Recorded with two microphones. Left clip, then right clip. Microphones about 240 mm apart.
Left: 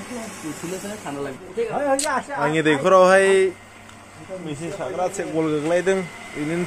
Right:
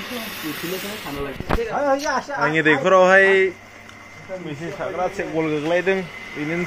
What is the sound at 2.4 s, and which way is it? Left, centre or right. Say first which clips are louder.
A man's voice: right 2 dB; centre.